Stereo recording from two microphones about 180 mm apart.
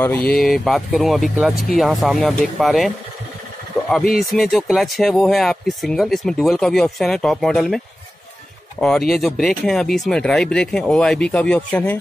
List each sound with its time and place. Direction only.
0.3 s speech: centre (ahead or behind)
4.0 s speech: 55° left (ahead or behind)
4.4 s speech: centre (ahead or behind)